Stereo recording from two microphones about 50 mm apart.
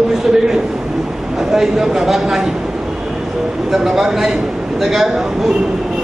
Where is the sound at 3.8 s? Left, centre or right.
Centre.